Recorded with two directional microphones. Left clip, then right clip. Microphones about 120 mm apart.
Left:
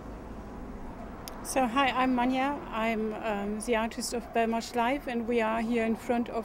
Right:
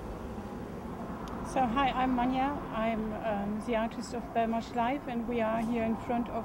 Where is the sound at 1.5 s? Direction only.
20° left (ahead or behind).